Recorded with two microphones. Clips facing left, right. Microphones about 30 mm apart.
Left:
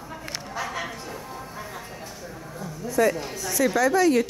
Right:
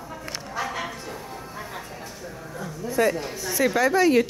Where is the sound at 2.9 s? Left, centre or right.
Centre.